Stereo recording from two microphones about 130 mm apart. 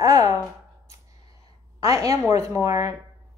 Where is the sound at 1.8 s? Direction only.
25° right (ahead or behind).